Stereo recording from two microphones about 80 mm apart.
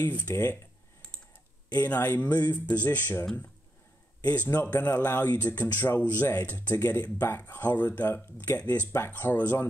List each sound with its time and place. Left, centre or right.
0.0 s speech: left
1.8 s speech: left
4.2 s speech: left